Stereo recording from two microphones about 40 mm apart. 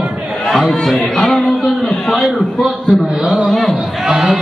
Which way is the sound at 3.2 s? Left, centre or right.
Right.